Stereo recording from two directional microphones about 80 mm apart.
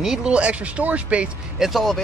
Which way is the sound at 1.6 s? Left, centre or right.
Centre.